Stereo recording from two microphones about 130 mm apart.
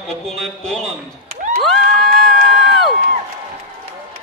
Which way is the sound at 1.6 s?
Centre (ahead or behind).